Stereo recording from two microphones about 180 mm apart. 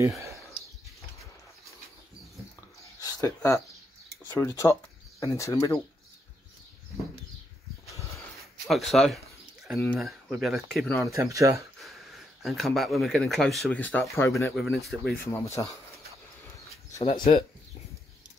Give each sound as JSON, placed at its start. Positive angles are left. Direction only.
{"t": 3.0, "sound": "a sound", "side_deg": 20}
{"t": 4.3, "sound": "speech", "side_deg": 15}
{"t": 8.4, "sound": "speech", "side_deg": 0}
{"t": 11.1, "sound": "speech", "side_deg": -15}
{"t": 11.8, "sound": "speech", "side_deg": 0}
{"t": 14.5, "sound": "speech", "side_deg": 0}
{"t": 15.1, "sound": "speech", "side_deg": 15}
{"t": 17.0, "sound": "speech", "side_deg": 40}